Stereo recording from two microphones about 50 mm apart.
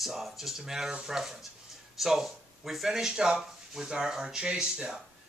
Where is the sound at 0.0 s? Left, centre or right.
Centre.